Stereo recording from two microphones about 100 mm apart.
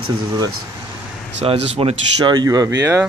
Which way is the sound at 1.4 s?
85° right.